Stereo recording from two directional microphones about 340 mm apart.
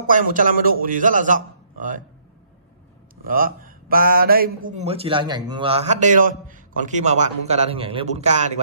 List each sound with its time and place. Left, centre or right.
0.0 s a man's voice: right
3.3 s speech: right